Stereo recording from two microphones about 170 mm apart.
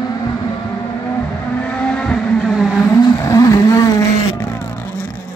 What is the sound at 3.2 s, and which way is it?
Vehicle, 20° left (ahead or behind).